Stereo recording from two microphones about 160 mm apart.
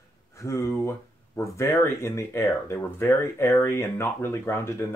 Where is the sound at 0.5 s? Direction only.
20° left (ahead or behind).